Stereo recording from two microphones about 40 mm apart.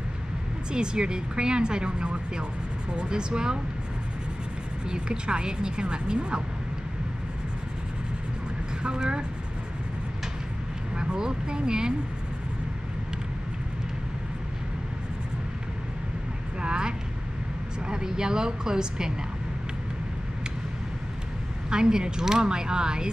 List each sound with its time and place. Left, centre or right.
0.7 s speech: right
4.8 s speech: right
8.8 s speech: right
11.0 s speech: right
16.6 s vehicle: right
17.8 s speech: centre
21.6 s speech: right